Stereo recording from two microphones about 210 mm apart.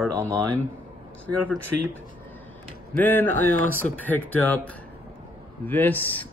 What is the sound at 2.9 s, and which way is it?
Speech, 10° left (ahead or behind).